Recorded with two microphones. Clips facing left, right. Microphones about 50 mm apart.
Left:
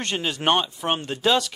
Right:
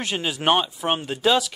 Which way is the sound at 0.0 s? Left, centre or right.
Centre.